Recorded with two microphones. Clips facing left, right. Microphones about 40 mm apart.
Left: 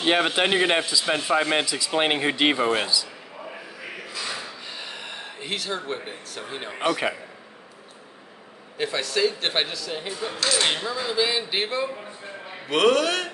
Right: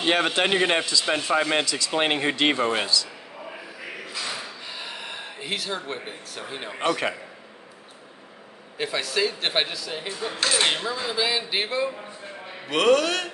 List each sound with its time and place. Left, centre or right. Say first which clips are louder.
0.0 s a man's voice: left 1 dB; centre
4.3 s a sound: even; centre
8.7 s a man's voice: even; centre
10.4 s speech: right 1 dB; right
10.7 s a man's voice: even; centre